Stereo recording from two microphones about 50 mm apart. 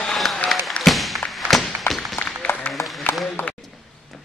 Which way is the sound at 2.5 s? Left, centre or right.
Left.